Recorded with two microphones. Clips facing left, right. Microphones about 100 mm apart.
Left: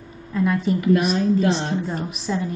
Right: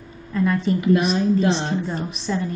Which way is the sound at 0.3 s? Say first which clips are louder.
Even; 5° left (ahead or behind).